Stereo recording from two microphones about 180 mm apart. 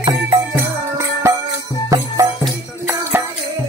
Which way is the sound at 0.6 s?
15° right (ahead or behind).